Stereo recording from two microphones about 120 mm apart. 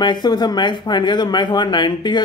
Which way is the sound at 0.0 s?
35° left (ahead or behind).